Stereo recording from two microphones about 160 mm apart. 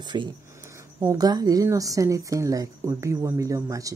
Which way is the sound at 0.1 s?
25° right (ahead or behind).